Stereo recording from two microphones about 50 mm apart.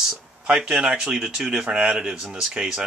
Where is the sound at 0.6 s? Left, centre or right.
Centre.